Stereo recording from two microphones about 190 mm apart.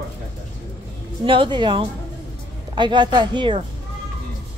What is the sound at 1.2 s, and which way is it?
Speech, 25° right (ahead or behind).